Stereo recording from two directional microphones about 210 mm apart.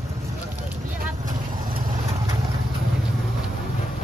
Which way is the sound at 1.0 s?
45° right (ahead or behind).